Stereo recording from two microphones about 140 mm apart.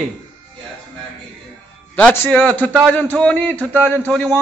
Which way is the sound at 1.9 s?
10° left (ahead or behind).